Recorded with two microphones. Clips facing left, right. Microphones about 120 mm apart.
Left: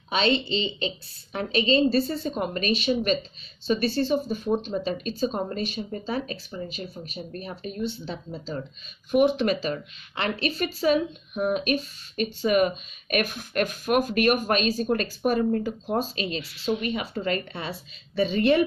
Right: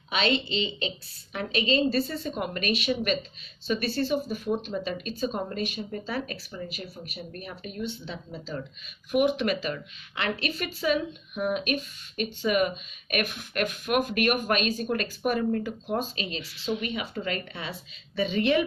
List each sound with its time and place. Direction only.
0.1 s a woman's voice: 30° left (ahead or behind)